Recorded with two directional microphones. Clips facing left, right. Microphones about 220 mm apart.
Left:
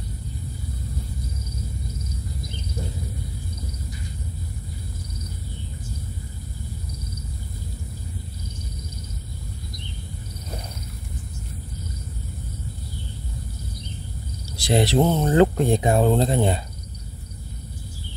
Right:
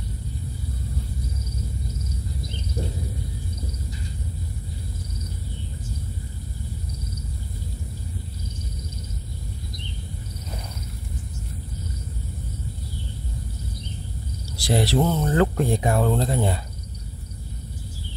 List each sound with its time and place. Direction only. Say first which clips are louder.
14.6 s speech: left 2 dB; 20° left (ahead or behind)